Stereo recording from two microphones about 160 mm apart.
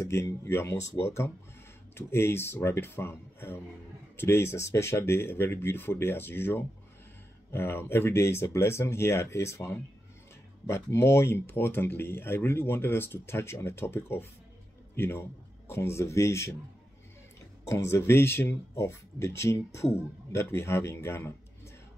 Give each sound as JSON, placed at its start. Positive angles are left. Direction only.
{"t": 0.0, "sound": "speech", "side_deg": 15}
{"t": 17.6, "sound": "speech", "side_deg": 20}